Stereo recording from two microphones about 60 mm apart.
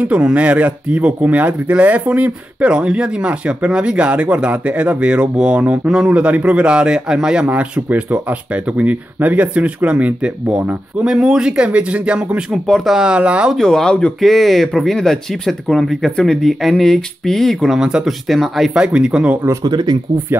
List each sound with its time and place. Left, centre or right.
0.0 s speech: right
7.4 s speech: right
11.1 s speech: centre
12.6 s speech: centre
12.9 s speech: centre
13.6 s speech: centre
14.2 s speech: centre
17.7 s speech: centre
18.0 s speech: centre
18.7 s speech: centre